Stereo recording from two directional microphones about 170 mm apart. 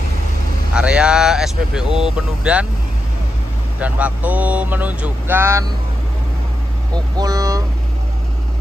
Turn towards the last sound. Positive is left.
turn(degrees=-20)  # may be behind; listen again after turning